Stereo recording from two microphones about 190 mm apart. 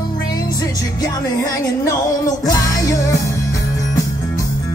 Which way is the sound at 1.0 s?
20° left (ahead or behind).